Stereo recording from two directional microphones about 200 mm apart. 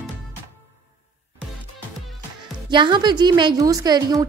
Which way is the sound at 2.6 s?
25° right (ahead or behind).